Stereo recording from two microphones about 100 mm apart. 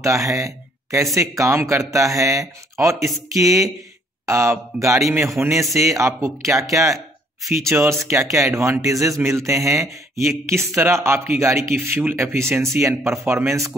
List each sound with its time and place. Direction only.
0.0 s speech: 30° right (ahead or behind)